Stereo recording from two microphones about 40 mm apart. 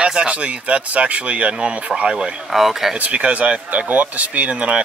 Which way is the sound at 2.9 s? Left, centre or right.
Right.